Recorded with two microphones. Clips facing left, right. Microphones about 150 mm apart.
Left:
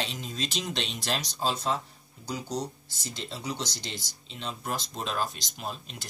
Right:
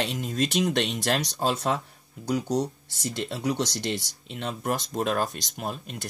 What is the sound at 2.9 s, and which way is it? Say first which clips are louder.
Speech: right 8 dB; 60° right (ahead or behind).